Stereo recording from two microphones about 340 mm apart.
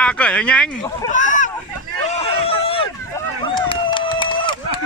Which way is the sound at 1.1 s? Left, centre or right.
Left.